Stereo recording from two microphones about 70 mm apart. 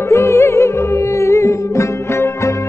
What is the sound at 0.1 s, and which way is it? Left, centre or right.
Music, left.